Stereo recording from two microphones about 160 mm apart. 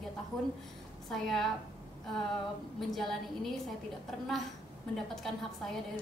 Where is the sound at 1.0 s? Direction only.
Centre (ahead or behind).